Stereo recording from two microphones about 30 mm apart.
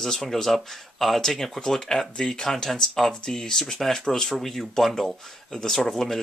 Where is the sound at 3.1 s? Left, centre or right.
Left.